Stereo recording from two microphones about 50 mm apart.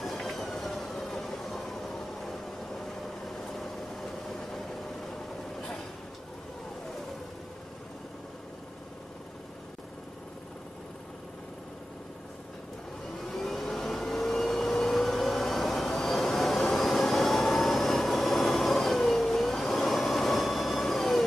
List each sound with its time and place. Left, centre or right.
0.0 s train: centre
3.3 s vehicle: centre
13.2 s vehicle: centre